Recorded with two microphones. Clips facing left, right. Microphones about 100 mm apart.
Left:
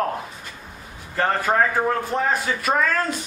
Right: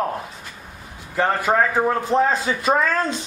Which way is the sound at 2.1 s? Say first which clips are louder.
Right 4 dB; 25° right (ahead or behind).